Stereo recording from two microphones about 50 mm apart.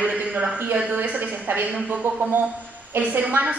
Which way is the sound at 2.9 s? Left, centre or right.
Right.